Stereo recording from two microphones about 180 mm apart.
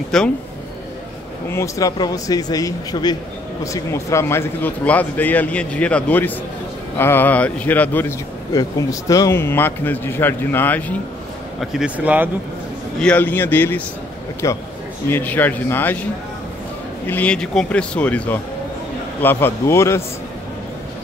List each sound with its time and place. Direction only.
0.1 s speech: centre (ahead or behind)
1.5 s speech: 15° left (ahead or behind)
11.6 s speech: 5° right (ahead or behind)
13.0 s speech: 10° left (ahead or behind)